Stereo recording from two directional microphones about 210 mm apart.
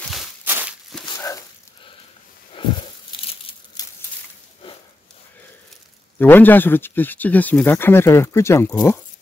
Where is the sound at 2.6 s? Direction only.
25° left (ahead or behind).